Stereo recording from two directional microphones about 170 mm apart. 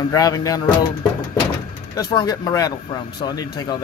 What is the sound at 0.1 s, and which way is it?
Speech, 20° left (ahead or behind).